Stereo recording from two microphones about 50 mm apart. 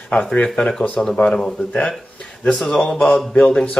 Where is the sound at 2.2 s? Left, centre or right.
Centre.